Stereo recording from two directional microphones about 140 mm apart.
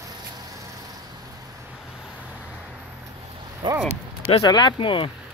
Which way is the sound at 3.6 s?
30° right (ahead or behind).